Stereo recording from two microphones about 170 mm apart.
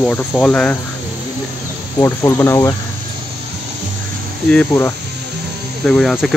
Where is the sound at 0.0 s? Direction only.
10° left (ahead or behind).